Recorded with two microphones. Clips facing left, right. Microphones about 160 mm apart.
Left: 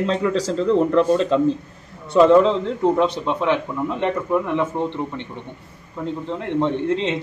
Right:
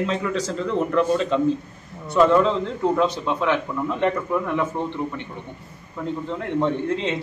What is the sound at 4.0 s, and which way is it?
Speech, 20° left (ahead or behind).